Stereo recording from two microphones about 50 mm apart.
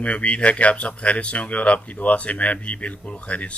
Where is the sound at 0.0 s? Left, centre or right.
Left.